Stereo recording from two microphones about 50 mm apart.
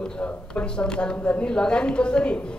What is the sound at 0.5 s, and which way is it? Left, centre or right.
A woman's voice, left.